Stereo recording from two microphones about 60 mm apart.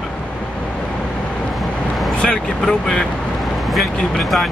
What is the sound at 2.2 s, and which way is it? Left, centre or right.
Speech, centre.